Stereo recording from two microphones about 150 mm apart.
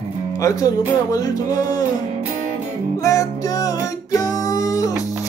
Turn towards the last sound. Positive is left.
turn(degrees=20)  # may be behind; listen again after turning